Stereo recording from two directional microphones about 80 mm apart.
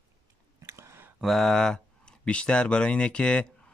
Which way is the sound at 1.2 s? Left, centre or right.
Centre.